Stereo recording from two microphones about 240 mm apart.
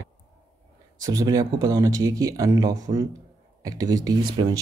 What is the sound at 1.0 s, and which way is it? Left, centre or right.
Speech, centre.